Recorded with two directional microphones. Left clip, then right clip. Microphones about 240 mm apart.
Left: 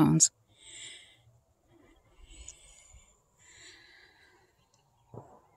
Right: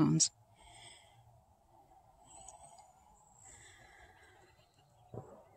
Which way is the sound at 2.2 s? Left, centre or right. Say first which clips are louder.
Left 2 dB; left.